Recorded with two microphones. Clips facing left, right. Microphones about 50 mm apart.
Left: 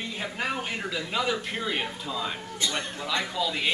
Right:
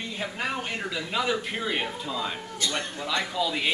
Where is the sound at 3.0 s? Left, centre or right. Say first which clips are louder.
Right 1 dB; centre.